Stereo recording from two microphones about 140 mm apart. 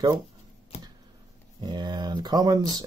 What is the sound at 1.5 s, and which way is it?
Speech, 30° right (ahead or behind).